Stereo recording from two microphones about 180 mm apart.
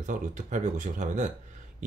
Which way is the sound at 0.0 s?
45° right (ahead or behind).